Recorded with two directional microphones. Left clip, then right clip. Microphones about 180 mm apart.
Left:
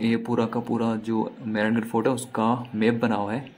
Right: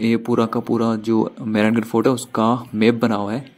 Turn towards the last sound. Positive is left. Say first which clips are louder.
# right 4 dB
turn(degrees=-25)  # may be behind; listen again after turning